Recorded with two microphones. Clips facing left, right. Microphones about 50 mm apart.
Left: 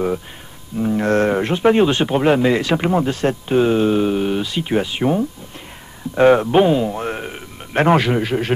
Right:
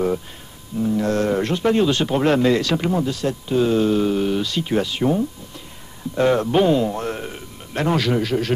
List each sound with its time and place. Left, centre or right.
0.7 s speech: left
6.5 s speech: centre
7.0 s a sound: left